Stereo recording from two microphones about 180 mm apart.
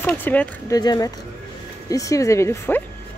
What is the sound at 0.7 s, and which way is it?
Speech, 20° left (ahead or behind).